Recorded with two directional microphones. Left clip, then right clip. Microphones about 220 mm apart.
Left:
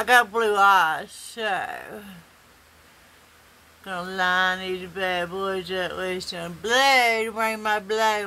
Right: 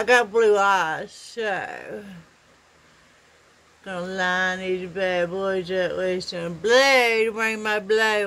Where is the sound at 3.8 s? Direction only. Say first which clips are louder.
Left 1 dB; 5° left (ahead or behind).